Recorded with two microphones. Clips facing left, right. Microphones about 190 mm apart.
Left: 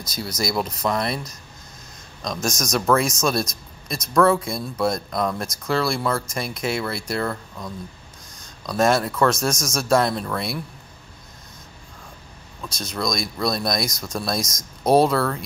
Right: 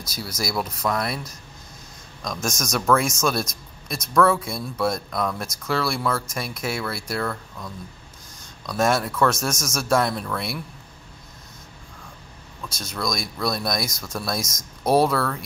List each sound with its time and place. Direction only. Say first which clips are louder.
0.1 s speech: left 3 dB; 5° right (ahead or behind)
0.6 s speech: even; 20° left (ahead or behind)
2.4 s speech: left 2 dB; 5° right (ahead or behind)
4.1 s speech: left 2 dB; 5° left (ahead or behind)
7.2 s speech: left 2 dB; 20° left (ahead or behind)
8.6 s speech: left 2 dB; 5° right (ahead or behind)
12.6 s speech: left 2 dB; 5° right (ahead or behind)
14.8 s speech: left 2 dB; 25° left (ahead or behind)
15.0 s speech: left 2 dB; centre (ahead or behind)